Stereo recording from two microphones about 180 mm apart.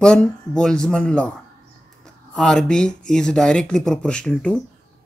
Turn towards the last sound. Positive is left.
turn(degrees=5)  # may be behind; listen again after turning